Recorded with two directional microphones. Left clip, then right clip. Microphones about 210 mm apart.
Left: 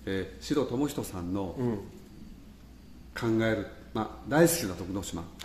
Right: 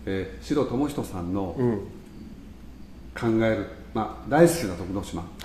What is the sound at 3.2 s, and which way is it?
A man's voice, 50° left (ahead or behind).